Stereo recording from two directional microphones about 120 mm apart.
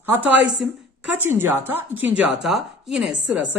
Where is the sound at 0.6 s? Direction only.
5° right (ahead or behind).